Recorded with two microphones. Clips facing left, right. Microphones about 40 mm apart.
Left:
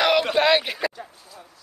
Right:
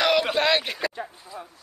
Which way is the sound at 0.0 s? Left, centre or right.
Centre.